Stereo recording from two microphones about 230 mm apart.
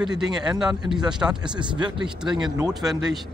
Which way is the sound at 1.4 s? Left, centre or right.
Centre.